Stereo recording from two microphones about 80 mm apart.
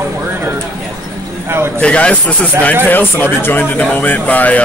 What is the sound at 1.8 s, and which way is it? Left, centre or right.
Speech, centre.